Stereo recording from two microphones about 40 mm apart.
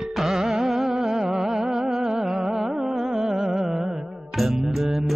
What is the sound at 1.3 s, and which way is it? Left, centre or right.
Music, centre.